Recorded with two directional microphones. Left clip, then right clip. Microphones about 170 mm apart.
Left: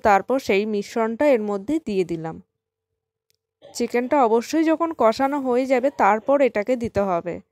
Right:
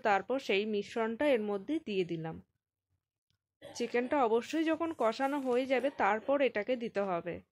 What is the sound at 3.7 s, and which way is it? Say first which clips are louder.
Speech: left 11 dB; 50° left (ahead or behind).